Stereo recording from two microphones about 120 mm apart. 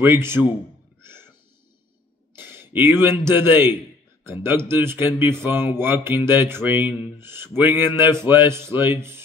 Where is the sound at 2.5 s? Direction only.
20° right (ahead or behind).